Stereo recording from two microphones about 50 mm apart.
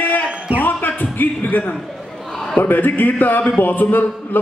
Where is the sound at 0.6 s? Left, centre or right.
Left.